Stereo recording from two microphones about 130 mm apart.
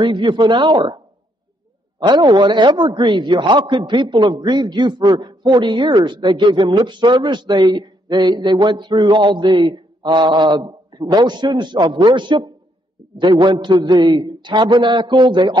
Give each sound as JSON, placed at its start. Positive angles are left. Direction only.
{"t": 0.0, "sound": "a man's voice", "side_deg": -35}
{"t": 2.0, "sound": "a man's voice", "side_deg": -35}